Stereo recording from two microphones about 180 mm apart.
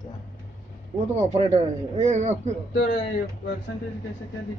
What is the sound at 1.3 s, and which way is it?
A man's voice, 40° right (ahead or behind).